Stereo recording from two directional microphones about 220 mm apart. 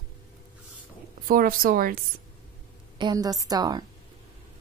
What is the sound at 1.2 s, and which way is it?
Speech, 40° right (ahead or behind).